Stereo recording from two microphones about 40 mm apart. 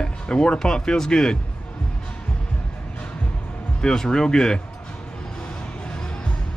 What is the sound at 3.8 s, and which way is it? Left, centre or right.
Speech, centre.